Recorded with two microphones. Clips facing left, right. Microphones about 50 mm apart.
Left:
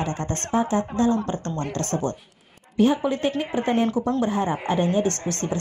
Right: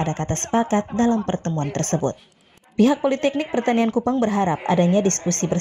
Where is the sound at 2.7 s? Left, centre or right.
Right.